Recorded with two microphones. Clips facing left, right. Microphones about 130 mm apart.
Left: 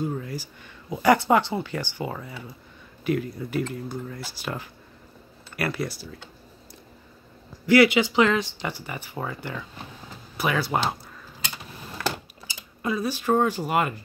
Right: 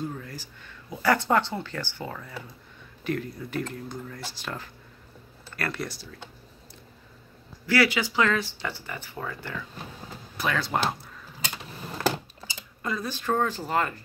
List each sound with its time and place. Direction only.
0.2 s a sound: 10° left (ahead or behind)
0.8 s speech: 15° left (ahead or behind)
7.6 s speech: 20° left (ahead or behind)
10.3 s speech: 10° left (ahead or behind)
12.8 s speech: 10° left (ahead or behind)